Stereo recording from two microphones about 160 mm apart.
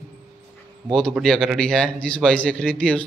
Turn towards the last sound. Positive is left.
turn(degrees=5)  # may be behind; listen again after turning